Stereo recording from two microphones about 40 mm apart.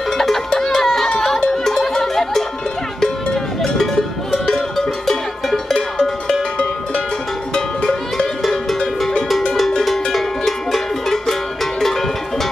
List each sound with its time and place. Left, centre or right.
0.2 s music: centre
3.6 s cowbell: centre
5.8 s music: centre
8.4 s music: centre